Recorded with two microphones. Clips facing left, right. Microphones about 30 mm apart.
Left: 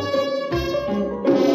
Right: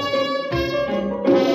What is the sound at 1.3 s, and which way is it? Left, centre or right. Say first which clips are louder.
Music: right 2 dB; right.